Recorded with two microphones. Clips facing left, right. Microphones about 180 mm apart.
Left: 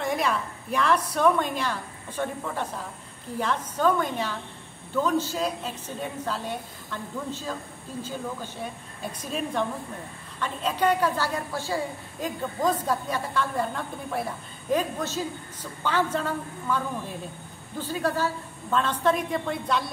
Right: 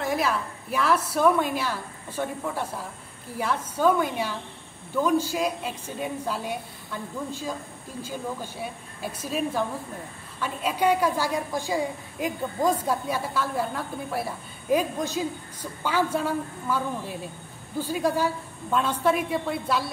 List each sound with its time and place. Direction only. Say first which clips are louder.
0.0 s a woman's voice: right 1 dB; 5° right (ahead or behind)